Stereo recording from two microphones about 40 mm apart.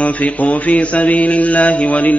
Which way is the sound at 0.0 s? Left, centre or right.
Left.